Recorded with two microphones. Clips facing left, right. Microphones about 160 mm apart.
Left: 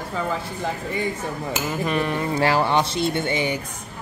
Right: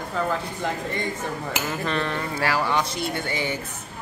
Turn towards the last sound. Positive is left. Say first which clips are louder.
# left 4 dB
turn(degrees=20)  # may be behind; listen again after turning